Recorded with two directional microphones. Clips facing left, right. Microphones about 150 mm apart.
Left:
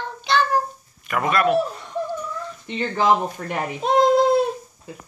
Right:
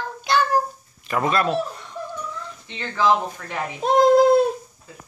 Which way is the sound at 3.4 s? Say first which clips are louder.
Left 6 dB; 35° left (ahead or behind).